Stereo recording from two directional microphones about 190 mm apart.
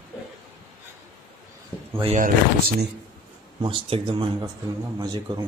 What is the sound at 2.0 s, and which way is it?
Speech, 35° right (ahead or behind).